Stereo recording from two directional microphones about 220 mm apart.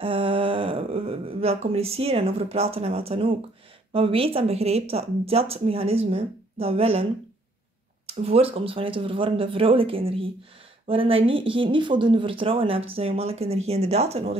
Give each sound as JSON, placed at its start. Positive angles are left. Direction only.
{"t": 0.0, "sound": "speech", "side_deg": -25}
{"t": 8.1, "sound": "speech", "side_deg": -25}